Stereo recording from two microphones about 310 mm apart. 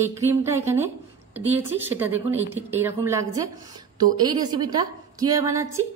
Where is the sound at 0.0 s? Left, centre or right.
Centre.